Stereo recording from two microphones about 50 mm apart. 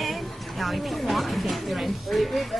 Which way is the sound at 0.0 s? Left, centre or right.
Centre.